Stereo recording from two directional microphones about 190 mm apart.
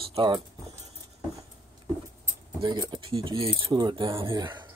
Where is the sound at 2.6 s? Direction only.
20° right (ahead or behind).